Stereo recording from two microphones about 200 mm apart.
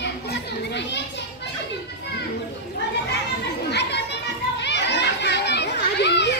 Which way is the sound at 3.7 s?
55° left (ahead or behind).